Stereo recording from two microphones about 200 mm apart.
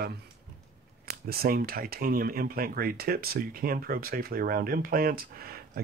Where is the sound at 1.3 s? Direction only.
50° right (ahead or behind).